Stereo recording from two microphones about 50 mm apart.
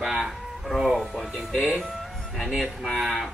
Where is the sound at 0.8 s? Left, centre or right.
Centre.